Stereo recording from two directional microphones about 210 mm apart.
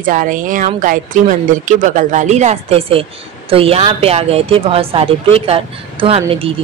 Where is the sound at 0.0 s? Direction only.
40° right (ahead or behind).